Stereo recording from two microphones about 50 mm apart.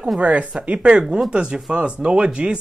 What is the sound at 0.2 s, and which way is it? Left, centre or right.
Speech, right.